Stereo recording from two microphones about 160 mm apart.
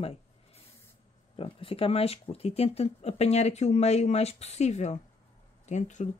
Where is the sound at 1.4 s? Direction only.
35° left (ahead or behind).